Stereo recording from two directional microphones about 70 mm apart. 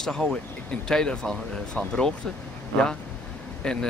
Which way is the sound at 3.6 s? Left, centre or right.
Centre.